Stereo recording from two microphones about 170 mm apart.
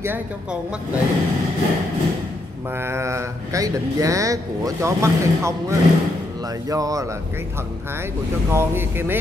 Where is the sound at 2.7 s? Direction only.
15° right (ahead or behind).